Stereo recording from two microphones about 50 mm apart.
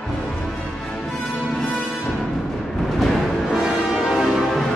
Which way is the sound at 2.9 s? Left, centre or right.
Centre.